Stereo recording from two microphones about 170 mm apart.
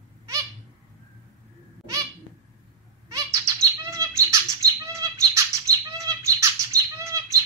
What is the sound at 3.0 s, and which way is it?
Bird, 20° right (ahead or behind).